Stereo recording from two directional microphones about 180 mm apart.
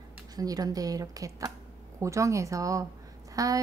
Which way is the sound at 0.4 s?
20° right (ahead or behind).